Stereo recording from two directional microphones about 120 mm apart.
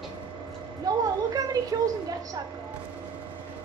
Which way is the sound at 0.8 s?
30° right (ahead or behind).